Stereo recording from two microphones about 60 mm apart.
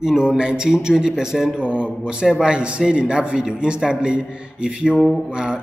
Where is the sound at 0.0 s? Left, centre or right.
Centre.